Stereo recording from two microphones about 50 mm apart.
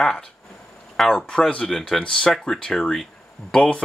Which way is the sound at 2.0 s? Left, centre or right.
Centre.